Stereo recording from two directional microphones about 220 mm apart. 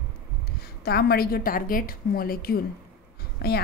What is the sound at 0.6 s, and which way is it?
A woman's voice, 45° left (ahead or behind).